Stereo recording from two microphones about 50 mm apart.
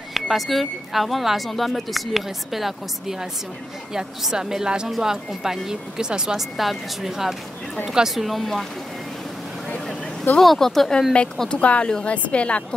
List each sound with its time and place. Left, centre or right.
0.1 s speech: centre
6.5 s speech: centre
10.4 s speech: centre
11.6 s a woman's voice: left